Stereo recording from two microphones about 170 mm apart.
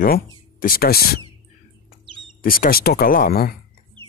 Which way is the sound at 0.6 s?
60° left (ahead or behind).